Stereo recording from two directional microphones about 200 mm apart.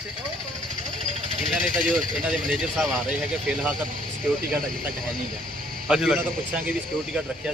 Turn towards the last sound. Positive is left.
turn(degrees=-5)  # may be behind; listen again after turning